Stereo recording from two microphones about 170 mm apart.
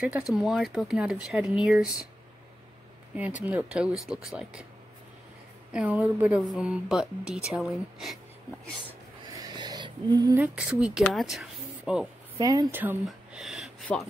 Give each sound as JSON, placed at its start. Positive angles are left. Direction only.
{"t": 0.3, "sound": "speech", "side_deg": -5}
{"t": 3.1, "sound": "speech", "side_deg": -10}
{"t": 5.7, "sound": "speech", "side_deg": -5}
{"t": 9.3, "sound": "a sound", "side_deg": -25}
{"t": 10.3, "sound": "speech", "side_deg": -5}
{"t": 12.4, "sound": "speech", "side_deg": -20}
{"t": 12.8, "sound": "speech", "side_deg": -5}